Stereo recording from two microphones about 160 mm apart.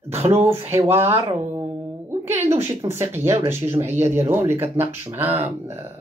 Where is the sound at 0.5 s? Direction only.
15° right (ahead or behind).